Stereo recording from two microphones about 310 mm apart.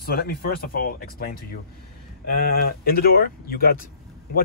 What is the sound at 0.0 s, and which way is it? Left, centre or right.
Speech, left.